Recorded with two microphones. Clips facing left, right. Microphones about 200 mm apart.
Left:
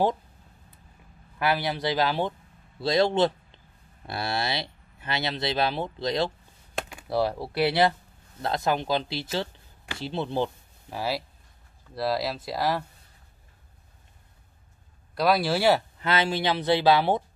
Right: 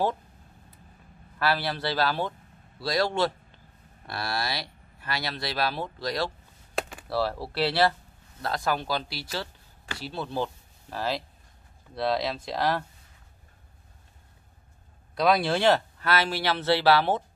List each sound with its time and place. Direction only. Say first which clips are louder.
1.4 s speech: left 1 dB; 15° left (ahead or behind)
6.7 s typing: right 2 dB; centre (ahead or behind)
7.1 s speech: left 4 dB; 15° left (ahead or behind)
15.1 s speech: even; 5° left (ahead or behind)
16.0 s speech: left 1 dB; 20° left (ahead or behind)